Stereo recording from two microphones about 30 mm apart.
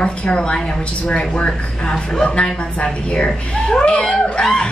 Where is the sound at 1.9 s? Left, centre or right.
Left.